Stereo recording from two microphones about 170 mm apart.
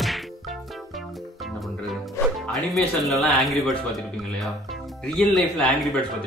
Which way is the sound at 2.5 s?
Centre (ahead or behind).